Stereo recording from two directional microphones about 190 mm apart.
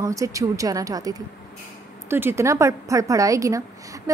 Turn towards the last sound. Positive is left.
turn(degrees=-15)  # may be behind; listen again after turning